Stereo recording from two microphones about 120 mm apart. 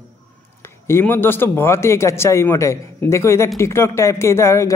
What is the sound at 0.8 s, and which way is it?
A man's voice, 20° left (ahead or behind).